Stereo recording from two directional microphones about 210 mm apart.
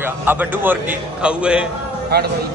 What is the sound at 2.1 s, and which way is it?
Speech, 50° right (ahead or behind).